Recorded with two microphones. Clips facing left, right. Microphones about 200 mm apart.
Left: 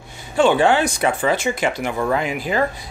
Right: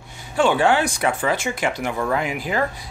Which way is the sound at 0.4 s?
20° left (ahead or behind).